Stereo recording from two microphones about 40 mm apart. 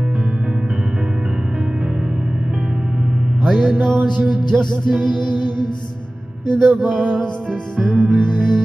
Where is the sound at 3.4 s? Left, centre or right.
Centre.